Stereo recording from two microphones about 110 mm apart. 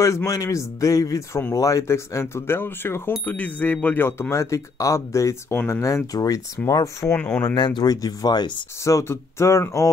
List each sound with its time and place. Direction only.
0.0 s speech: 30° left (ahead or behind)
7.2 s speech: 10° left (ahead or behind)
7.4 s speech: 40° left (ahead or behind); by 9.8 s 25° left (ahead or behind)